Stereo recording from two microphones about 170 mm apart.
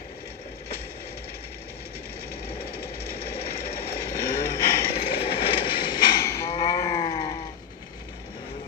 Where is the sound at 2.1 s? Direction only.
65° left (ahead or behind).